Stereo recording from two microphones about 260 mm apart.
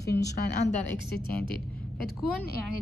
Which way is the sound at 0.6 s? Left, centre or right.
Left.